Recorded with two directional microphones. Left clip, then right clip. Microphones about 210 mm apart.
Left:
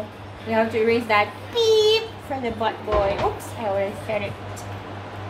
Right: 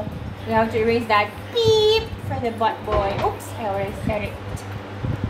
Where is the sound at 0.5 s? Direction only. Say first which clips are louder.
Right 1 dB; 15° left (ahead or behind).